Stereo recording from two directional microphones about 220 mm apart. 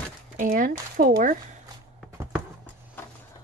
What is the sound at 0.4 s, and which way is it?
Speech, 40° right (ahead or behind).